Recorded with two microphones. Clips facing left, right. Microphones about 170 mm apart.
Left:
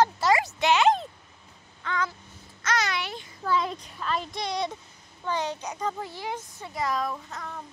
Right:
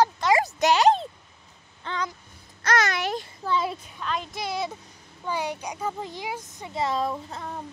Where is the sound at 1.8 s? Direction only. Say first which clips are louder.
Left 1 dB; 20° right (ahead or behind).